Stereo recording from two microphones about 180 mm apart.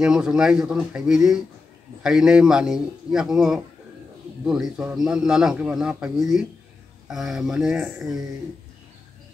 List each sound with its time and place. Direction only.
0.0 s a man's voice: 5° right (ahead or behind)